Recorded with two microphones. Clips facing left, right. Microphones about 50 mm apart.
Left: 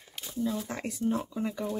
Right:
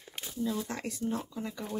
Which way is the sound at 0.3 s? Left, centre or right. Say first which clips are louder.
Left 2 dB; centre.